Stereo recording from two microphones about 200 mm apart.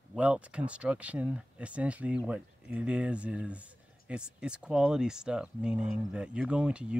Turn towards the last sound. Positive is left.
turn(degrees=-5)  # may be behind; listen again after turning